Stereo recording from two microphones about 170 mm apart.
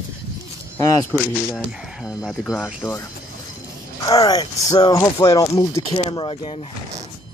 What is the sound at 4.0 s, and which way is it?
Speech, 20° left (ahead or behind).